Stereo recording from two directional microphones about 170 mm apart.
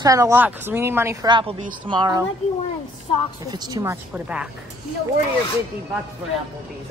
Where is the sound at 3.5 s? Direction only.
20° right (ahead or behind).